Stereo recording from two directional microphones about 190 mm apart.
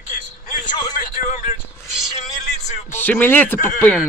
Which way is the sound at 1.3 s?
45° left (ahead or behind).